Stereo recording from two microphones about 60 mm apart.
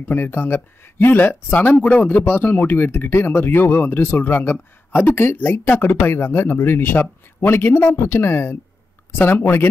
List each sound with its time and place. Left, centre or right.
0.0 s speech: left